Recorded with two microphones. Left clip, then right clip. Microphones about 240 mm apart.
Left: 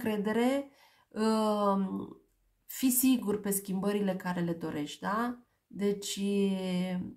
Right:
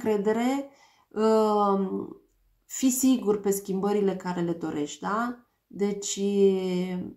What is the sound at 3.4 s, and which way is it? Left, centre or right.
A woman's voice, left.